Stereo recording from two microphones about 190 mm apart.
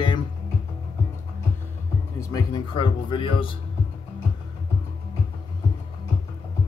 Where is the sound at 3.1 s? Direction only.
25° left (ahead or behind).